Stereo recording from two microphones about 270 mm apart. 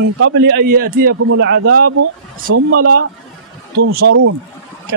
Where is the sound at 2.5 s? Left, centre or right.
Right.